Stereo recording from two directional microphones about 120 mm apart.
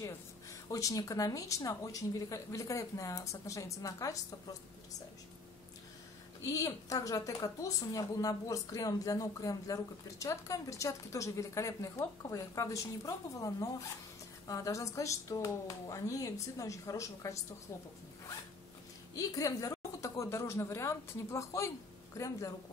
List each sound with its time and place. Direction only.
0.7 s speech: 30° left (ahead or behind)
6.4 s speech: 30° left (ahead or behind)
19.1 s speech: 30° left (ahead or behind)